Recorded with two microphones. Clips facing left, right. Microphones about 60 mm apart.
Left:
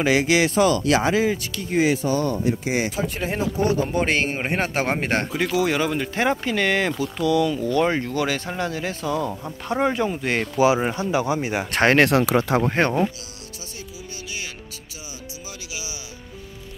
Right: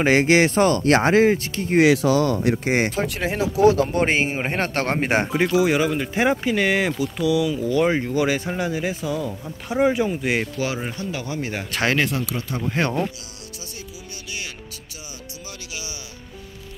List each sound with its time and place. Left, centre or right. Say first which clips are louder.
0.0 s speech: right 2 dB; right
1.8 s speech: right 4 dB; right
2.4 s speech: right 2 dB; right
3.3 s speech: right 6 dB; right
4.1 s speech: right 1 dB; centre
4.4 s speech: even; centre
5.0 s speech: right 3 dB; centre
10.8 s speech: left 6 dB; left
11.4 s speech: left 4 dB; centre
11.7 s speech: left 4 dB; left
12.0 s speech: left 7 dB; left
12.6 s speech: left 3 dB; left